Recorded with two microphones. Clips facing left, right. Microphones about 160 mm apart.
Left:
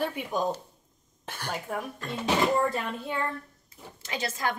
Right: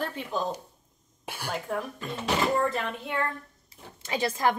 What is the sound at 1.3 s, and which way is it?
Speech, 10° right (ahead or behind).